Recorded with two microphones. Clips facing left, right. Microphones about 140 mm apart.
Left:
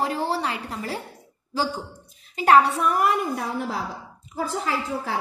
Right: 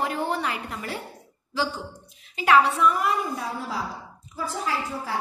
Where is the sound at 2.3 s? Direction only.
45° left (ahead or behind); by 5.1 s 75° left (ahead or behind).